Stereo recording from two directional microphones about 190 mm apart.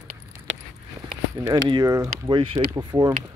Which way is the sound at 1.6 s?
20° right (ahead or behind).